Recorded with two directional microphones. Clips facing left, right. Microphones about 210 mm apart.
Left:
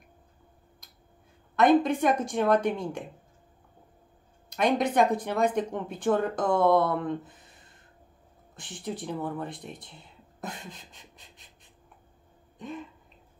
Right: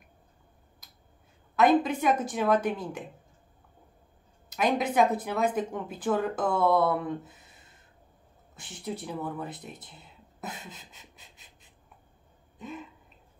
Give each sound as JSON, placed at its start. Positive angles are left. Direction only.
{"t": 1.6, "sound": "speech", "side_deg": -5}
{"t": 4.6, "sound": "speech", "side_deg": -5}
{"t": 8.5, "sound": "speech", "side_deg": -10}
{"t": 10.4, "sound": "a sound", "side_deg": -5}
{"t": 12.6, "sound": "speech", "side_deg": -5}